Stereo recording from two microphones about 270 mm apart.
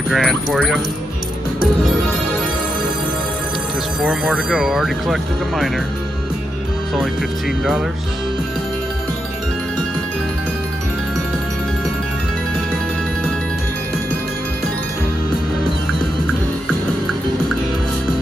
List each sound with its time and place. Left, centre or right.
0.1 s speech: centre
4.0 s speech: centre